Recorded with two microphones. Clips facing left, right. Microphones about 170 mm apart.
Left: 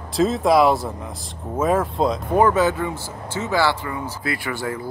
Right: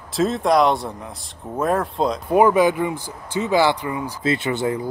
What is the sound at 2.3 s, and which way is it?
Speech, 10° right (ahead or behind).